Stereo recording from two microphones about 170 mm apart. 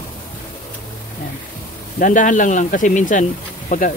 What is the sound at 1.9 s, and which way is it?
Speech, 50° left (ahead or behind).